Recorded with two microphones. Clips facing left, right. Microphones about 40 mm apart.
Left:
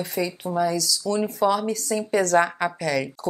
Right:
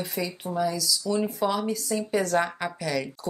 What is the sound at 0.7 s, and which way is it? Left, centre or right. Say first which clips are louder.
Speech: left 3 dB; centre.